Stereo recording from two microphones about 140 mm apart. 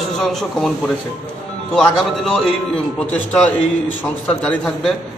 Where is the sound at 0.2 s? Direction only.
Centre (ahead or behind).